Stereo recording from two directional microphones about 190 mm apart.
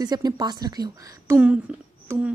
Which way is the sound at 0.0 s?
20° right (ahead or behind).